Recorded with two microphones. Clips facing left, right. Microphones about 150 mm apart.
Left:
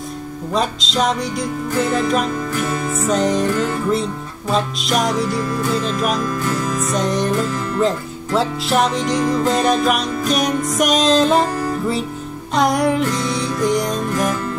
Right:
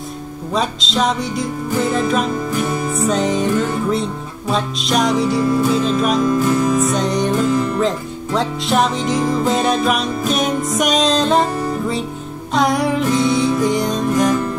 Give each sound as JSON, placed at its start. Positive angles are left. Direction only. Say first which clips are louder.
{"t": 0.5, "sound": "speech", "louder": "even", "side_deg": 0}
{"t": 2.5, "sound": "music", "louder": "right 2 dB", "side_deg": -20}
{"t": 2.9, "sound": "speech", "louder": "left 1 dB", "side_deg": 0}
{"t": 5.4, "sound": "music", "louder": "right 6 dB", "side_deg": -20}
{"t": 5.7, "sound": "speech", "louder": "right 3 dB", "side_deg": 0}
{"t": 6.2, "sound": "music", "louder": "right 6 dB", "side_deg": -20}
{"t": 6.7, "sound": "speech", "louder": "right 3 dB", "side_deg": 0}
{"t": 7.5, "sound": "music", "louder": "right 5 dB", "side_deg": -15}
{"t": 7.8, "sound": "speech", "louder": "even", "side_deg": 0}
{"t": 12.5, "sound": "music", "louder": "even", "side_deg": 0}